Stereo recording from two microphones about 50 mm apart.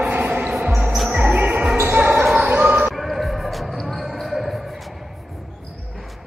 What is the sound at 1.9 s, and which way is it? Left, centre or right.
Basketball bounce, right.